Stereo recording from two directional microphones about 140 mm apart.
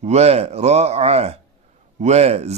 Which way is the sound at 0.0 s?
50° right (ahead or behind).